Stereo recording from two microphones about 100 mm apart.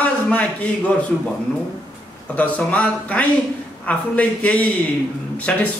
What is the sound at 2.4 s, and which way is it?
A man's voice, 15° left (ahead or behind).